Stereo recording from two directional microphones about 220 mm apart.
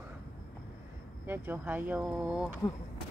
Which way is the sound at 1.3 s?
10° right (ahead or behind).